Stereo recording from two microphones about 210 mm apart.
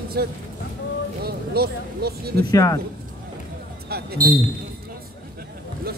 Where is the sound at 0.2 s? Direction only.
50° right (ahead or behind).